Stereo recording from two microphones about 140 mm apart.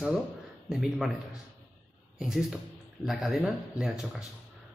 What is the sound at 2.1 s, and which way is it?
Speech, 5° right (ahead or behind).